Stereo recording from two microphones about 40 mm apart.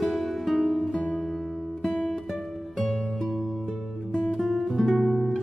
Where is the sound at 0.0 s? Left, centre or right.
Centre.